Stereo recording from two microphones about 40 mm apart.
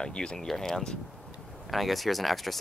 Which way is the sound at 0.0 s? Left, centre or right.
Left.